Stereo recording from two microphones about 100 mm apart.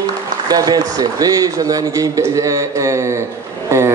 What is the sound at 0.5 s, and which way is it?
A man's voice, 40° right (ahead or behind).